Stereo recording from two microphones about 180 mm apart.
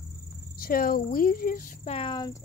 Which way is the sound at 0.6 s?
55° left (ahead or behind).